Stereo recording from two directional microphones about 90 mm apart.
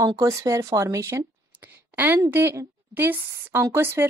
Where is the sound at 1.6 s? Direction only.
20° right (ahead or behind).